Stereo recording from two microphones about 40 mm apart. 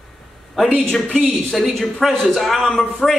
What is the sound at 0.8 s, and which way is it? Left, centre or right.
Speech, centre.